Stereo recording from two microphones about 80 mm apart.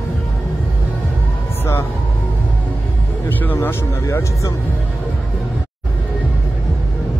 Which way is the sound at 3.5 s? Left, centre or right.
Left.